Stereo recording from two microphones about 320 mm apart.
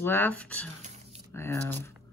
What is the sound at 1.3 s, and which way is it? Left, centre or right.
Speech, centre.